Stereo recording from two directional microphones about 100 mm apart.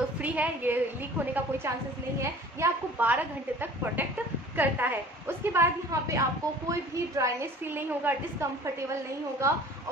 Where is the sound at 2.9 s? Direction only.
20° right (ahead or behind).